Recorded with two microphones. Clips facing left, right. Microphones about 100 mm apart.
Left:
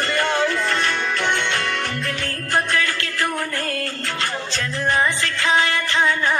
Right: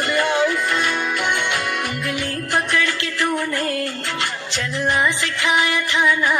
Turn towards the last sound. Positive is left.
turn(degrees=-15)  # may be behind; listen again after turning